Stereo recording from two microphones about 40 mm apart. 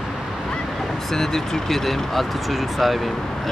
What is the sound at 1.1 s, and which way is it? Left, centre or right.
Speech, centre.